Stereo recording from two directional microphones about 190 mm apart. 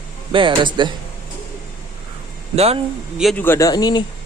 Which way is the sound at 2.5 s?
30° right (ahead or behind).